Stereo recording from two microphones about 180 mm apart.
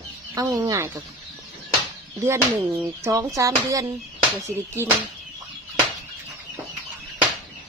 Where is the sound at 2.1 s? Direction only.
15° right (ahead or behind).